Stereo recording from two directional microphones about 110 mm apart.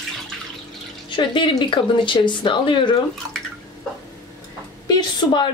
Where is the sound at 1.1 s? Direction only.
45° left (ahead or behind).